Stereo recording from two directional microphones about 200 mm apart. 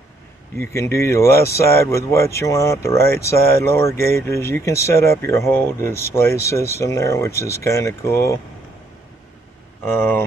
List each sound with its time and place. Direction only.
0.6 s speech: 15° left (ahead or behind)
9.9 s speech: 10° left (ahead or behind)